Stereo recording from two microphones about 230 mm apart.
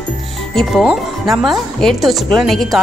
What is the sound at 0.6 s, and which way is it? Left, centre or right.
Speech, centre.